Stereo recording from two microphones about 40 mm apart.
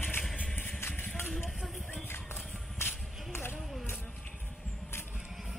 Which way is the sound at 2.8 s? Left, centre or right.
Left.